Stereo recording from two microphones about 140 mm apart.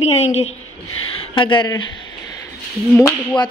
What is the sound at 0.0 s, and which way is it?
A woman's voice, 50° left (ahead or behind).